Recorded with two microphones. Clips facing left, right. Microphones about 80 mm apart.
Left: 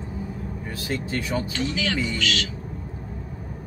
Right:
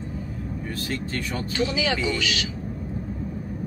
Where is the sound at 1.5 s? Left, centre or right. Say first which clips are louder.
Right 2 dB; centre.